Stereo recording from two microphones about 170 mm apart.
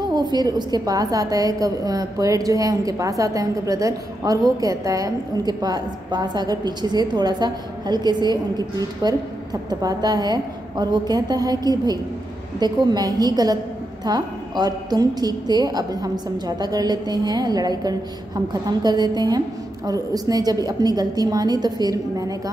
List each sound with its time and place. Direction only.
0.1 s a woman's voice: 25° right (ahead or behind)